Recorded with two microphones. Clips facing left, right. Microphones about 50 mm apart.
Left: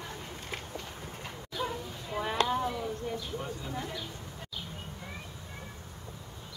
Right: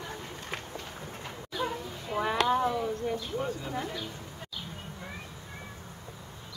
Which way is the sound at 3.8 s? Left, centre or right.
Centre.